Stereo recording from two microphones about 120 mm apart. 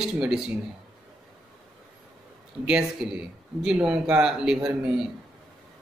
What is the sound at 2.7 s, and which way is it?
Speech, 10° right (ahead or behind).